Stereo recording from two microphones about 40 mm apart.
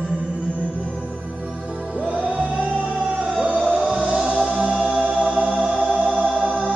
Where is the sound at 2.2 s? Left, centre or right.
Right.